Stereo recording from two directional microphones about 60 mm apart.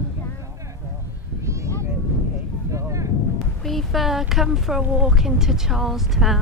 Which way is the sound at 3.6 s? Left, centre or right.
Centre.